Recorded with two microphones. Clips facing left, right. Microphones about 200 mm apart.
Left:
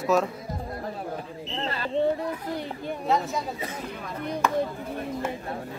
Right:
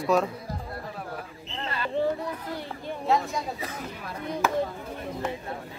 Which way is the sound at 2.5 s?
15° left (ahead or behind).